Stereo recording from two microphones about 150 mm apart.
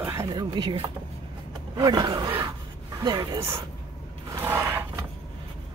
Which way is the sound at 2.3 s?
15° right (ahead or behind).